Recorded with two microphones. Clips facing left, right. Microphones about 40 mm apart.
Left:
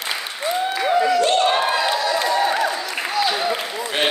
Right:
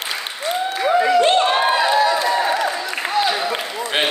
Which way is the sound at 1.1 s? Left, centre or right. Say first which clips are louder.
Right 2 dB; right.